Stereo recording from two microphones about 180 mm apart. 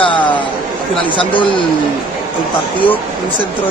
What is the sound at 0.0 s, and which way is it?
Chatter, 25° left (ahead or behind).